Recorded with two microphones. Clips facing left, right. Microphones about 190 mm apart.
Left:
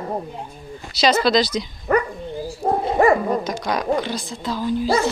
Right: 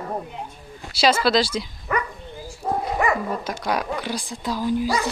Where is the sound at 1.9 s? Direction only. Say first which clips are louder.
Left 9 dB; 40° left (ahead or behind).